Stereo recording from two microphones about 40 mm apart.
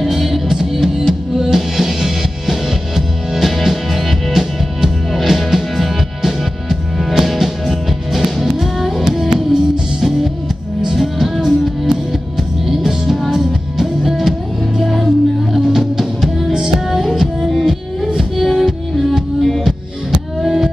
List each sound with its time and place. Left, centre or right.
0.0 s music: centre
16.5 s music: centre